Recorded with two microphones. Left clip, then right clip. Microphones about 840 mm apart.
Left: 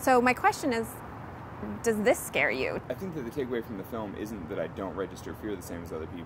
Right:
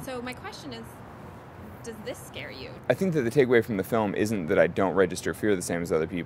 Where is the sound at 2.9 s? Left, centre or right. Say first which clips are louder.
Right 11 dB; right.